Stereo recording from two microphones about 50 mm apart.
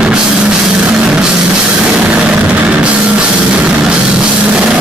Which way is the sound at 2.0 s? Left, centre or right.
Right.